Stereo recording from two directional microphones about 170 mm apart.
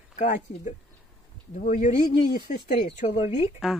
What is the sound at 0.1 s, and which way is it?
Speech, 45° left (ahead or behind).